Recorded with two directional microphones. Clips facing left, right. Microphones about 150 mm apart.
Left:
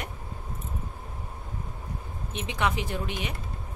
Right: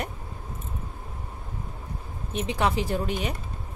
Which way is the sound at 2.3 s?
35° right (ahead or behind).